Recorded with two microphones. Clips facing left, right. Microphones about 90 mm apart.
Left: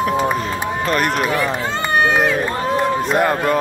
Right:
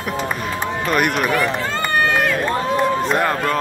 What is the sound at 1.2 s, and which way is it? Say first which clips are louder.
Run: even; 10° left (ahead or behind).